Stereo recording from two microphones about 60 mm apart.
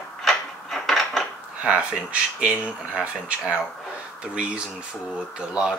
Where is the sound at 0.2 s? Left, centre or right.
Centre.